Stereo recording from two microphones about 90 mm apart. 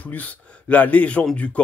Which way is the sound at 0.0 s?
15° left (ahead or behind).